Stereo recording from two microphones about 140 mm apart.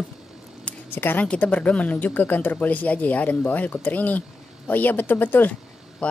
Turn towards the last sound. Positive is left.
turn(degrees=10)  # may be behind; listen again after turning